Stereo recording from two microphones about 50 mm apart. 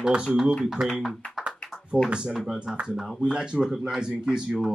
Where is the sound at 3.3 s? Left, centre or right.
Centre.